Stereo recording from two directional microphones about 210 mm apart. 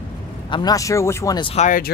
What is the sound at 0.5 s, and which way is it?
Speech, 20° left (ahead or behind).